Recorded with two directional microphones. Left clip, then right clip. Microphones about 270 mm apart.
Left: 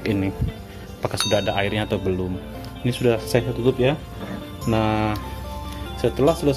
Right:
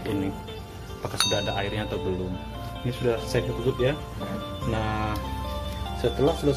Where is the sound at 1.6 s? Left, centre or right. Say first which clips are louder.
Left 6 dB; left.